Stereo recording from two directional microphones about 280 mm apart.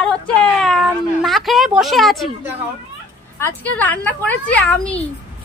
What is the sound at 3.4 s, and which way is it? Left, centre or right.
A child's voice, centre.